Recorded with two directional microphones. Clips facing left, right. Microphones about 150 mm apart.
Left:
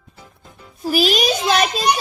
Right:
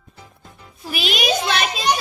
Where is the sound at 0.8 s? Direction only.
40° left (ahead or behind).